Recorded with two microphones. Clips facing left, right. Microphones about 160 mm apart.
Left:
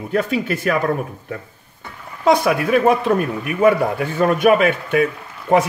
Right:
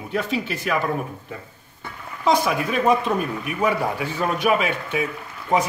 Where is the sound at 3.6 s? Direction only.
50° left (ahead or behind).